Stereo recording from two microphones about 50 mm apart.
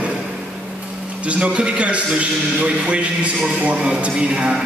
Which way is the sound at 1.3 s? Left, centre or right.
Right.